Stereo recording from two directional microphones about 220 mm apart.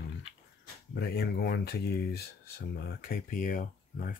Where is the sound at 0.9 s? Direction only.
45° left (ahead or behind).